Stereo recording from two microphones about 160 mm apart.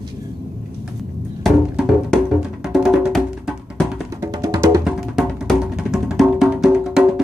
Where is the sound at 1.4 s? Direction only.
Centre (ahead or behind).